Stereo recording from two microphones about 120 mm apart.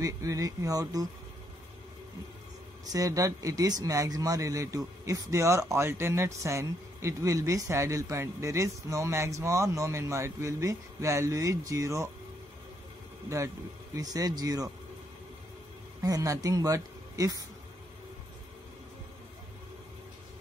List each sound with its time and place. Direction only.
0.0 s speech: 25° right (ahead or behind)
2.9 s speech: 30° right (ahead or behind)
13.9 s speech: 30° right (ahead or behind)
16.0 s speech: 30° right (ahead or behind)